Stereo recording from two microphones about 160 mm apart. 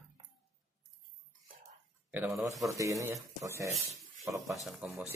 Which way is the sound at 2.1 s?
10° right (ahead or behind).